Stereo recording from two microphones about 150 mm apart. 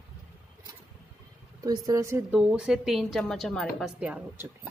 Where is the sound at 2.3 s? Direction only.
5° right (ahead or behind).